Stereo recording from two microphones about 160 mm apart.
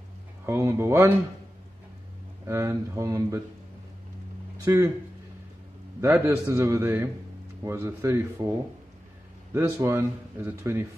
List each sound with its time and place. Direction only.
0.5 s a man's voice: 15° right (ahead or behind)
2.4 s speech: 15° right (ahead or behind)
4.6 s a man's voice: 15° right (ahead or behind)
5.9 s a man's voice: 15° right (ahead or behind)
9.5 s a man's voice: 15° right (ahead or behind)